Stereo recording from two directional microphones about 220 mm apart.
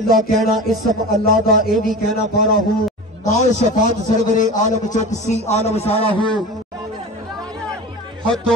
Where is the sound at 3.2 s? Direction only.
30° left (ahead or behind).